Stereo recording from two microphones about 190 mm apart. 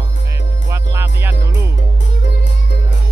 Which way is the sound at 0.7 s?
15° right (ahead or behind).